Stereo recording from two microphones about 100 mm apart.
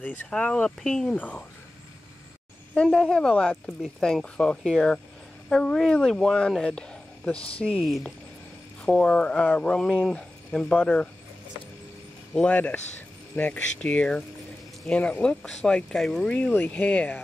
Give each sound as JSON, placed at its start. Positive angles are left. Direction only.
{"t": 0.0, "sound": "speech", "side_deg": 15}
{"t": 1.1, "sound": "speech", "side_deg": 15}
{"t": 2.7, "sound": "speech", "side_deg": 10}
{"t": 7.8, "sound": "speech", "side_deg": 0}
{"t": 12.4, "sound": "speech", "side_deg": 15}